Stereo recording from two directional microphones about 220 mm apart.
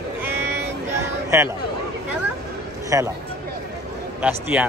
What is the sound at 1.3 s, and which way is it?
Speech, 15° right (ahead or behind).